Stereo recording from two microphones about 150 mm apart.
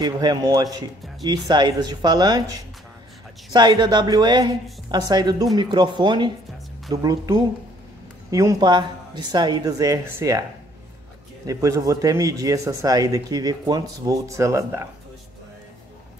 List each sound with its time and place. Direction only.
0.0 s a man's voice: 25° right (ahead or behind)
11.4 s a man's voice: 20° right (ahead or behind)